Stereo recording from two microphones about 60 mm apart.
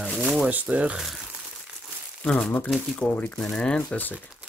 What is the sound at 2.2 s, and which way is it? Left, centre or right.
Speech, centre.